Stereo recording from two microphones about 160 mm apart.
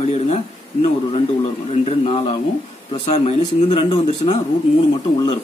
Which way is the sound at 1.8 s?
35° left (ahead or behind).